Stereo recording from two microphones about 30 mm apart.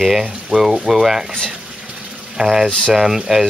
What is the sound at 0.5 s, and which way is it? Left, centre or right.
Speech, right.